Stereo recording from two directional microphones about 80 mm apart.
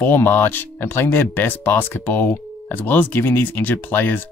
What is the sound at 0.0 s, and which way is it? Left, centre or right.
Speech, left.